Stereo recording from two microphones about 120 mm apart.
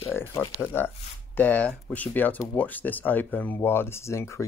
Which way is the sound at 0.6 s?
20° left (ahead or behind).